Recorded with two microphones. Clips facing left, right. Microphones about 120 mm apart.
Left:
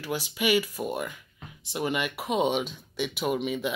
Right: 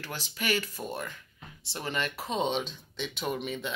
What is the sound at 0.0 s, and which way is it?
Speech, 10° left (ahead or behind).